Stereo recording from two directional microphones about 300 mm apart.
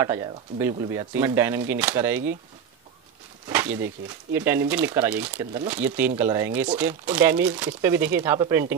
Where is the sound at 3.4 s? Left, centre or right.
Centre.